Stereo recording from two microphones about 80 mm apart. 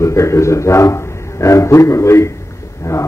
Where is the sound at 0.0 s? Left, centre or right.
Left.